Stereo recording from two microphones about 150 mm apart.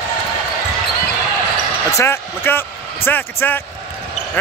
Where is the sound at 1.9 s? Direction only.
15° left (ahead or behind).